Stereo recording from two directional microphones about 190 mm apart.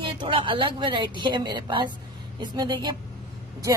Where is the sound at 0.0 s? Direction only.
25° right (ahead or behind).